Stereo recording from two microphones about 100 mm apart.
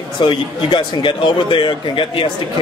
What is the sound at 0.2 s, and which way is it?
Speech, 55° left (ahead or behind).